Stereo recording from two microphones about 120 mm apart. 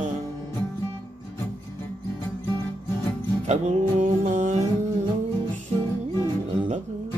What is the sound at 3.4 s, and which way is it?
Music, 70° right (ahead or behind).